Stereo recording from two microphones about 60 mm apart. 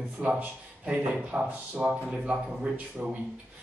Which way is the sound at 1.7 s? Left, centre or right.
Right.